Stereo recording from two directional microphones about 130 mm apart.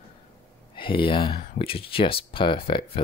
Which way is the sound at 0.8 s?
40° left (ahead or behind).